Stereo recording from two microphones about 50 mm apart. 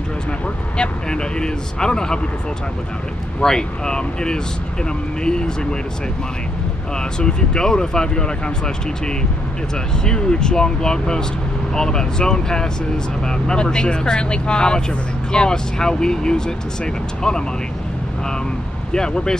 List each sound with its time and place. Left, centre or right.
0.7 s speech: centre
3.3 s speech: centre
7.0 s speech: centre
18.9 s speech: centre